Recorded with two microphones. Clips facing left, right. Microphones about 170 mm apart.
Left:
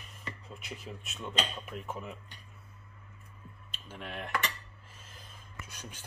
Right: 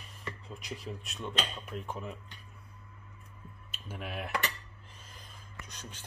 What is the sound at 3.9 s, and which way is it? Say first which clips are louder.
Cutlery: right 2 dB; 10° right (ahead or behind).